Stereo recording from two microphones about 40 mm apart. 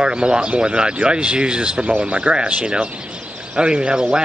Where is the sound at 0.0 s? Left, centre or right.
Right.